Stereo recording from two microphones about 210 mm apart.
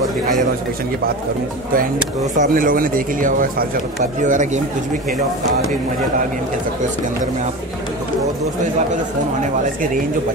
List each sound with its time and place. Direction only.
2.3 s speech: 40° right (ahead or behind)